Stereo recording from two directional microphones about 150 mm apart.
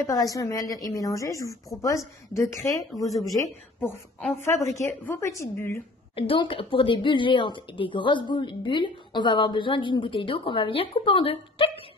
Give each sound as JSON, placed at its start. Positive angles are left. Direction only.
{"t": 0.0, "sound": "a woman's voice", "side_deg": 25}
{"t": 2.9, "sound": "speech", "side_deg": 0}
{"t": 3.8, "sound": "a woman's voice", "side_deg": 10}
{"t": 6.1, "sound": "a woman's voice", "side_deg": 35}